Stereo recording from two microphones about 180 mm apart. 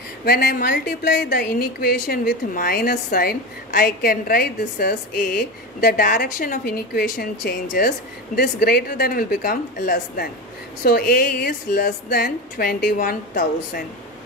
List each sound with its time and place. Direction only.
0.2 s a woman's voice: 60° left (ahead or behind)